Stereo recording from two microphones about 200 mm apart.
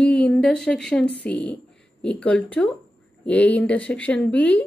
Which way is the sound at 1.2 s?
5° left (ahead or behind).